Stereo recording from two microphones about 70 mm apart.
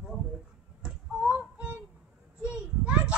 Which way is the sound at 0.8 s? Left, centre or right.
Centre.